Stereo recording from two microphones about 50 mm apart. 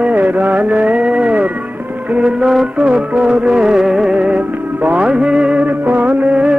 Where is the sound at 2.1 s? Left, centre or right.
Right.